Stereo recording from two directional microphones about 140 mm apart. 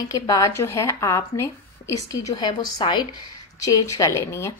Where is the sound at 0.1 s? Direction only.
25° left (ahead or behind).